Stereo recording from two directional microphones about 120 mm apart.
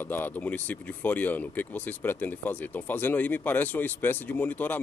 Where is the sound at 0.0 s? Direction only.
15° left (ahead or behind).